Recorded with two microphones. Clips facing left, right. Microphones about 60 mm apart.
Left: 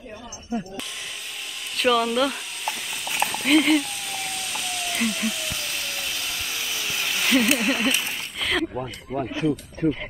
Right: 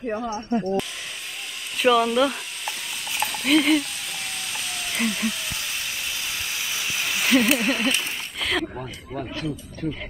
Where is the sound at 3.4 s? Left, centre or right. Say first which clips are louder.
Even; centre.